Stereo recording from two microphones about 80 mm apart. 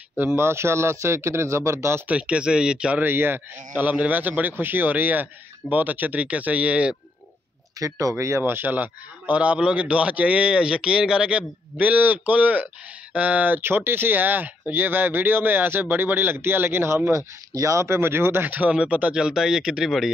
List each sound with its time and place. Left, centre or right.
0.2 s a man's voice: right
2.0 s speech: centre
3.0 s speech: right
7.8 s speech: right; by 20.1 s centre